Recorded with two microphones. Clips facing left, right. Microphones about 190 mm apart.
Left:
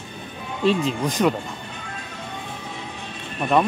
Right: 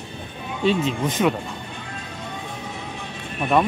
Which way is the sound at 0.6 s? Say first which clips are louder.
Even; centre (ahead or behind).